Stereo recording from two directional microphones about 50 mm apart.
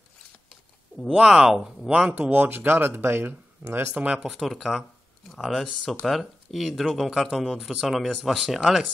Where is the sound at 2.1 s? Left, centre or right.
Right.